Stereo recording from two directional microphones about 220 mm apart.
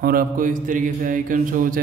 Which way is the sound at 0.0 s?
40° right (ahead or behind).